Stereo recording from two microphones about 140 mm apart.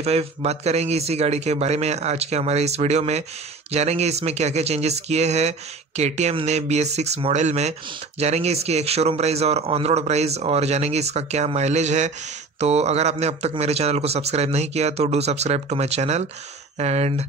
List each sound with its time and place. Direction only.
0.0 s speech: 45° right (ahead or behind)